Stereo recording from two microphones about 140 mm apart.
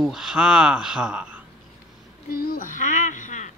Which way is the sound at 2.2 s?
85° left.